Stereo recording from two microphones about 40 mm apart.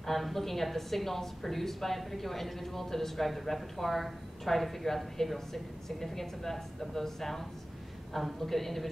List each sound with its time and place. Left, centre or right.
0.0 s speech: centre